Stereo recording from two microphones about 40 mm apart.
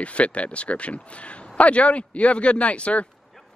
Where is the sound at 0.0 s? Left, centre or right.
Left.